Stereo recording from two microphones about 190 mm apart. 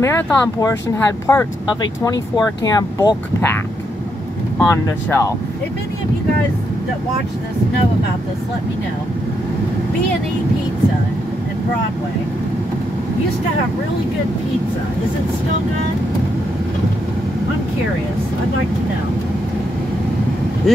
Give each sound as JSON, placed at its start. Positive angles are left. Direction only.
{"t": 0.0, "sound": "speech", "side_deg": 15}
{"t": 4.6, "sound": "speech", "side_deg": 15}
{"t": 20.7, "sound": "speech", "side_deg": 0}